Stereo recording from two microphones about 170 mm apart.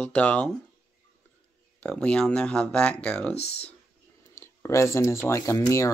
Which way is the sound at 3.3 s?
35° left (ahead or behind).